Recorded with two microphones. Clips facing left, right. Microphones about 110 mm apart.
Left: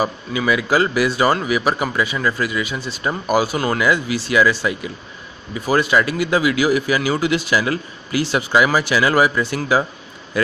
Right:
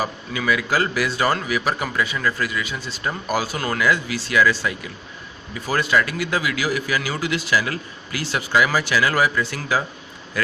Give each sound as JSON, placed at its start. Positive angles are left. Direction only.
{"t": 0.0, "sound": "a man's voice", "side_deg": 10}
{"t": 2.7, "sound": "a man's voice", "side_deg": 25}